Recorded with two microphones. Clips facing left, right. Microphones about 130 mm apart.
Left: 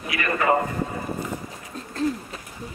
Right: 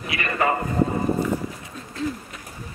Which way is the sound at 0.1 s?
30° right (ahead or behind).